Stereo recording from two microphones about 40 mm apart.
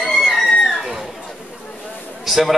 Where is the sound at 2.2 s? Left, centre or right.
Centre.